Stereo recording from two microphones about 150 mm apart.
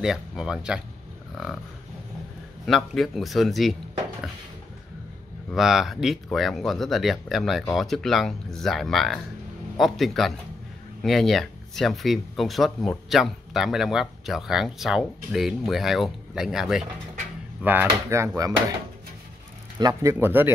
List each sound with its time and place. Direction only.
0.0 s speech: 5° right (ahead or behind)
2.6 s speech: centre (ahead or behind)
5.5 s speech: centre (ahead or behind); by 18.5 s 20° right (ahead or behind)
19.8 s speech: 25° right (ahead or behind)